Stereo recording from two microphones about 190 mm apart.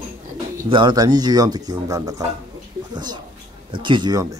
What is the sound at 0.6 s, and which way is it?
Speech, 25° right (ahead or behind).